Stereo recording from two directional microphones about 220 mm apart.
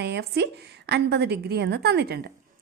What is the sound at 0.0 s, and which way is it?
A woman's voice, 50° right (ahead or behind).